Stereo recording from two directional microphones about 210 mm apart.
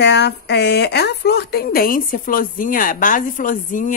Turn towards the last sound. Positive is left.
turn(degrees=40)  # may be behind; listen again after turning